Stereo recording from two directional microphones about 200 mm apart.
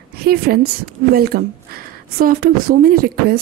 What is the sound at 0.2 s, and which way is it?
A woman's voice, 50° right (ahead or behind).